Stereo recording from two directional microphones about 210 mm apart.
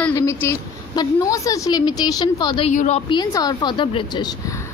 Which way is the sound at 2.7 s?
35° left (ahead or behind).